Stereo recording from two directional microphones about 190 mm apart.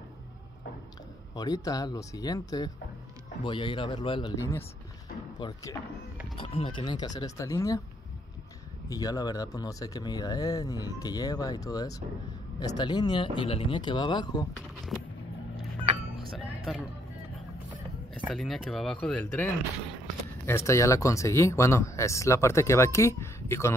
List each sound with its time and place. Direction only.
1.3 s speech: 20° left (ahead or behind)
6.3 s speech: 30° left (ahead or behind)
8.8 s speech: 20° left (ahead or behind)
16.3 s music: centre (ahead or behind)
18.2 s speech: centre (ahead or behind)